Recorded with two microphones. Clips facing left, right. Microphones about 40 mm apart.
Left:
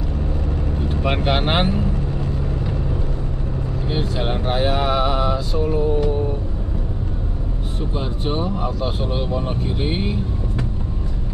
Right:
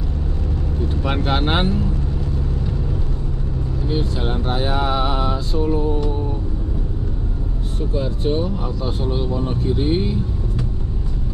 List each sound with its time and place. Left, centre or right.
1.0 s speech: left
3.9 s speech: left
4.8 s mantra: centre
7.9 s speech: left